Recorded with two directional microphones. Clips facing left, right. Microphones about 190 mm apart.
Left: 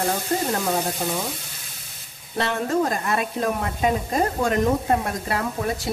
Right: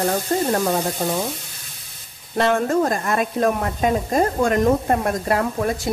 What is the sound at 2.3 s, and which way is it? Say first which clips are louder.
Speech: right 4 dB; 45° right (ahead or behind).